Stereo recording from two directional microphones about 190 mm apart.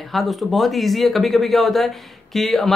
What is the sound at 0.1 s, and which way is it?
Speech, centre (ahead or behind).